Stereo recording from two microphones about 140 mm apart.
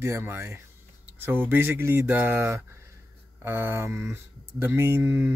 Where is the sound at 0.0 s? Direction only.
15° right (ahead or behind).